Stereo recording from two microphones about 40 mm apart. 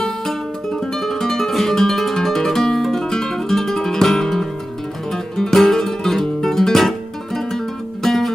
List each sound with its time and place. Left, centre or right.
0.0 s music: centre
2.1 s guitar: centre
5.1 s music: centre